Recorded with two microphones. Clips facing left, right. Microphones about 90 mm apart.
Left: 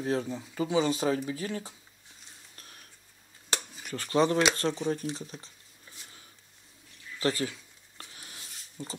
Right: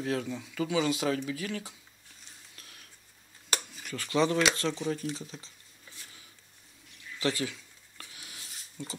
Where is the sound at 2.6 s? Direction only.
40° left (ahead or behind).